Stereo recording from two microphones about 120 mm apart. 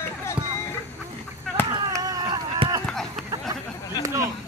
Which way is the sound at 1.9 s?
30° right (ahead or behind).